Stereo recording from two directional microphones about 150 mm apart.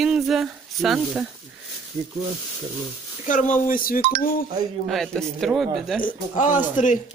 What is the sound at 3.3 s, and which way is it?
Speech, 60° left (ahead or behind).